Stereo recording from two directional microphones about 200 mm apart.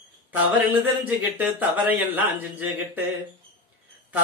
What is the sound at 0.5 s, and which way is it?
Speech, 10° right (ahead or behind).